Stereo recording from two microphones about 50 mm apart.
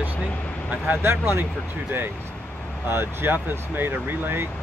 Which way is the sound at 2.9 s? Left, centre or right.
Right.